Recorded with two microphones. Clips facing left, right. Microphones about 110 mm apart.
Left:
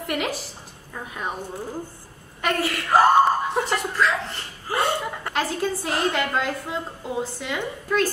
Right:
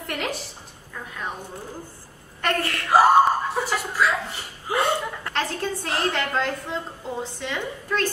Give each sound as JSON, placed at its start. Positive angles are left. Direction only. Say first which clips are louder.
{"t": 0.0, "sound": "a woman's voice", "louder": "left 2 dB", "side_deg": 5}
{"t": 0.9, "sound": "speech", "louder": "left 2 dB", "side_deg": 15}
{"t": 2.4, "sound": "a woman's voice", "louder": "left 1 dB", "side_deg": 5}
{"t": 4.7, "sound": "a woman's voice", "louder": "right 1 dB", "side_deg": 10}